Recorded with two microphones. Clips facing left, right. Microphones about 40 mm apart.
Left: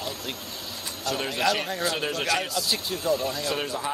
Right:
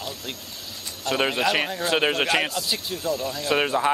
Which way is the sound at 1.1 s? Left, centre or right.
Right.